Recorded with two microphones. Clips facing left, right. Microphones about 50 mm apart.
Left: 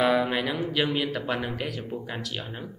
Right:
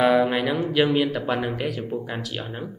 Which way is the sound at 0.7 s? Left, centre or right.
Centre.